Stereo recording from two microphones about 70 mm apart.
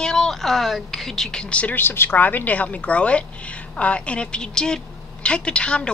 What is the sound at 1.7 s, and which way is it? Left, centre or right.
A woman's voice, left.